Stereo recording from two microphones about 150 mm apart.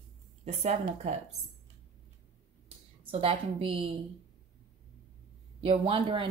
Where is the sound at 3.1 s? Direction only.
40° right (ahead or behind).